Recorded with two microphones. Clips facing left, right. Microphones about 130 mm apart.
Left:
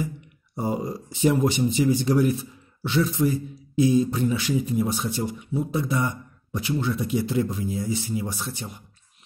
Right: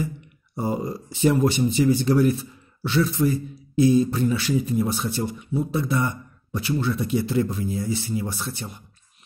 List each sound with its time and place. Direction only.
0.6 s a man's voice: 15° left (ahead or behind)